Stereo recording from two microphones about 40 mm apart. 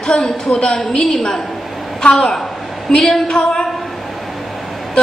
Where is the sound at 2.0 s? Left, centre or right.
Left.